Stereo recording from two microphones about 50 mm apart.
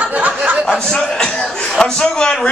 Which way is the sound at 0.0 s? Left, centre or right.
Right.